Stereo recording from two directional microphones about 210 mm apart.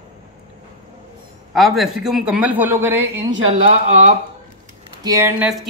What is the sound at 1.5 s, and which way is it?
Speech, centre (ahead or behind).